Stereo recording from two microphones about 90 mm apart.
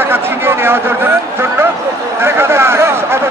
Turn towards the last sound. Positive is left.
turn(degrees=-30)  # may be behind; listen again after turning